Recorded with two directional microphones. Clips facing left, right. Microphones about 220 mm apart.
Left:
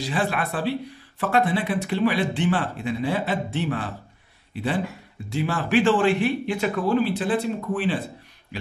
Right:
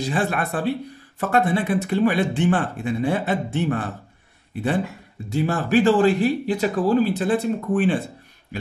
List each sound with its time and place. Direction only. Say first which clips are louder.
0.1 s speech: even; 45° right (ahead or behind)
5.3 s speech: right 3 dB; 45° right (ahead or behind)